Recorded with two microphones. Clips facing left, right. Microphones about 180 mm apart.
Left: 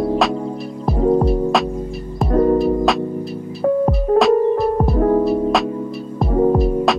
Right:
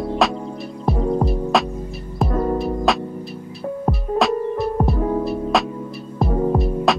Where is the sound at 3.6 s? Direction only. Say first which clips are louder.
Left 11 dB; 70° left (ahead or behind).